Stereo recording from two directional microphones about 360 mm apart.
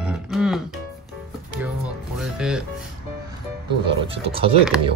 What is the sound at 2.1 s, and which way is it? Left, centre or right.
Music, centre.